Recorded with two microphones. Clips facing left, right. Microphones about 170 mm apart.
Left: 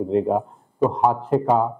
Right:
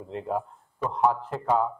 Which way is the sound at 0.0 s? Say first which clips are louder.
Left 11 dB; 20° left (ahead or behind).